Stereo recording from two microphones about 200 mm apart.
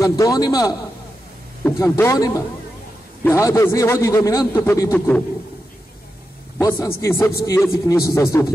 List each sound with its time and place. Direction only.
0.0 s a man's voice: 15° left (ahead or behind)
6.6 s a man's voice: 15° left (ahead or behind)